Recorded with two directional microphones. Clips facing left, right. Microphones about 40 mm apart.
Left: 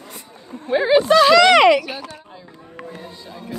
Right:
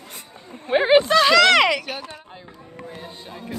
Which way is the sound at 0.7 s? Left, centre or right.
Right.